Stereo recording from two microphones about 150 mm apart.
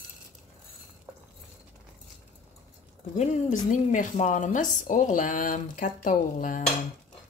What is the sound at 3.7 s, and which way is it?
Speech, 55° left (ahead or behind).